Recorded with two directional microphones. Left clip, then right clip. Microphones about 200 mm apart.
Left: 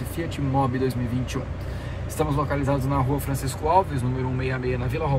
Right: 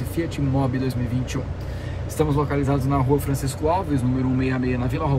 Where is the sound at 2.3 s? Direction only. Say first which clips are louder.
Right 2 dB; 15° left (ahead or behind).